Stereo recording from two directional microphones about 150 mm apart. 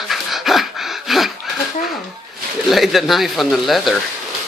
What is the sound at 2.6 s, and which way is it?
Speech, centre (ahead or behind).